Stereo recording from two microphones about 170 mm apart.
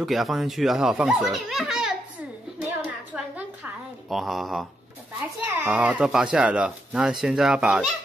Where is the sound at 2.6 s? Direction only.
10° right (ahead or behind).